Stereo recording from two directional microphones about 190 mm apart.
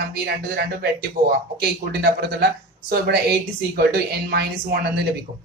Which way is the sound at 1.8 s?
55° right (ahead or behind).